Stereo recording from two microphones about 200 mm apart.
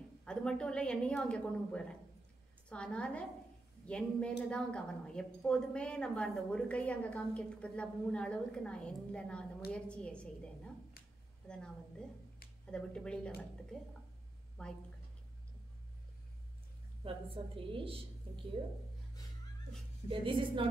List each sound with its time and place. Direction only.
0.2 s a woman's voice: 5° left (ahead or behind)
12.7 s a woman's voice: 5° left (ahead or behind)
17.0 s a woman's voice: 25° right (ahead or behind)
20.1 s a woman's voice: 25° right (ahead or behind)